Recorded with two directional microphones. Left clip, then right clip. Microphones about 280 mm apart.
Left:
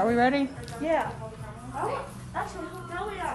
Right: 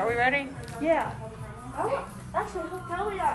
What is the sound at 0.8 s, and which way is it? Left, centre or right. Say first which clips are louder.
Speech: right 2 dB; left.